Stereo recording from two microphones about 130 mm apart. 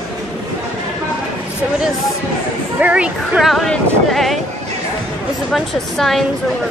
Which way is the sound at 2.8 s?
10° right (ahead or behind).